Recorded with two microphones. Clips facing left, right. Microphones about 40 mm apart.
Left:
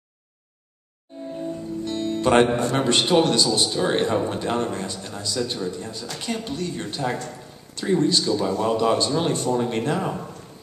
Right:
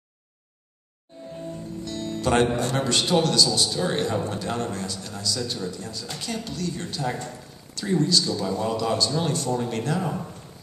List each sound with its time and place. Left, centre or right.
1.4 s music: left
2.7 s a man's voice: left